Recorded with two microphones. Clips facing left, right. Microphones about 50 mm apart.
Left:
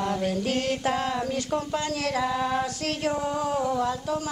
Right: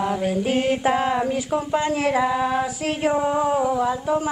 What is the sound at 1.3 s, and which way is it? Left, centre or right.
Mantra, centre.